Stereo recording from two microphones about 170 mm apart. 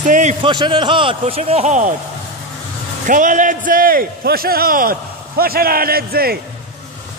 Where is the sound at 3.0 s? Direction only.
50° right (ahead or behind).